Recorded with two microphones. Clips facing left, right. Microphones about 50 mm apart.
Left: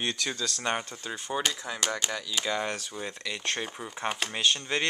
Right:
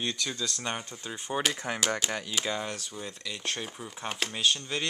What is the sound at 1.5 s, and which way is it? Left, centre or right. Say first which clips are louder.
Speech: right 2 dB; right.